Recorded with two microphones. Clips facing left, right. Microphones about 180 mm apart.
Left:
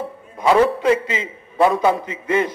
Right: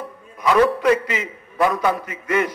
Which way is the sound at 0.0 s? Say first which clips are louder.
Left 3 dB; 30° left (ahead or behind).